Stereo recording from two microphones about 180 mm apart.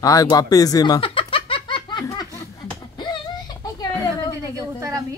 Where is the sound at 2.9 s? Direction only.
25° left (ahead or behind).